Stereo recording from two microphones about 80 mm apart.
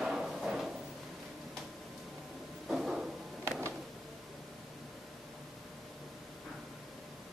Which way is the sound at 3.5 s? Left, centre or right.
Right.